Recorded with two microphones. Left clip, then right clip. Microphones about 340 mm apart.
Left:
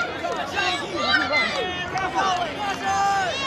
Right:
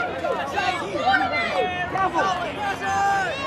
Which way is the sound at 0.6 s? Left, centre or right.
Right.